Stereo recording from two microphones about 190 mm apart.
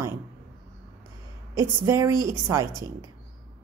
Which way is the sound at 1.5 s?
15° right (ahead or behind).